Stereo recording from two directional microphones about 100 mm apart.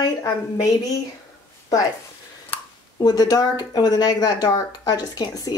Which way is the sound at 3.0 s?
40° left (ahead or behind).